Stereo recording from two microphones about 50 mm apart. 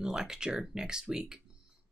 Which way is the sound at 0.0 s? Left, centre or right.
Centre.